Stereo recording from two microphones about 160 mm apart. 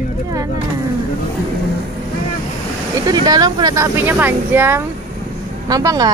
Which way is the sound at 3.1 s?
25° right (ahead or behind).